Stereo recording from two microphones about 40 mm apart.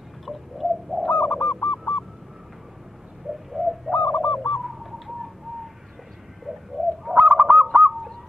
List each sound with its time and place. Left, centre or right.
0.2 s bird: centre
1.1 s bird: left
3.5 s bird: centre
3.9 s bird: left
4.6 s bird: centre
7.2 s honk: right